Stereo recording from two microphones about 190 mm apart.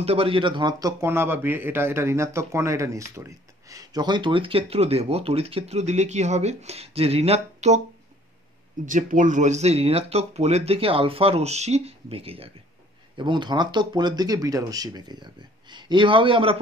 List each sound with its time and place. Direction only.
0.0 s a man's voice: 30° right (ahead or behind)
8.8 s a man's voice: 45° right (ahead or behind); by 16.5 s 25° right (ahead or behind)